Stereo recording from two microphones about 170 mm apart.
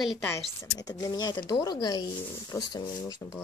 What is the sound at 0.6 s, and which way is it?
Speech, 20° left (ahead or behind).